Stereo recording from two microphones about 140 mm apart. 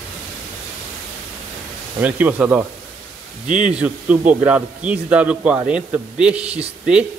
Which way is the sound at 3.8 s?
10° right (ahead or behind).